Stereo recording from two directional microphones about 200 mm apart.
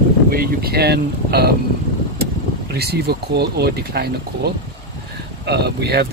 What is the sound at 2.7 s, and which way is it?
Speech, 55° right (ahead or behind).